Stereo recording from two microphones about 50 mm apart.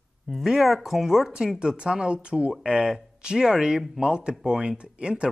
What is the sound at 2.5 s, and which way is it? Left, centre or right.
Speech, centre.